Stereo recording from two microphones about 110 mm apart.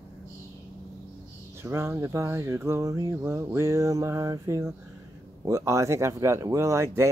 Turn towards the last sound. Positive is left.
turn(degrees=-25)  # may be behind; listen again after turning